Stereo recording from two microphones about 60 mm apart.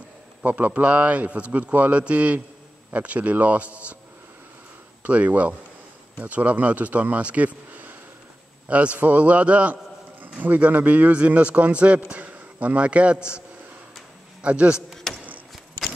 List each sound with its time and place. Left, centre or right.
0.4 s a man's voice: right
5.0 s a man's voice: right
14.4 s a man's voice: right
15.1 s a sound: centre